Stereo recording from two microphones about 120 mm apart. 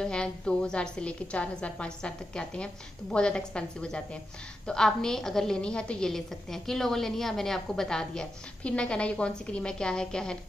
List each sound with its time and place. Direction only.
0.0 s a woman's voice: 5° left (ahead or behind)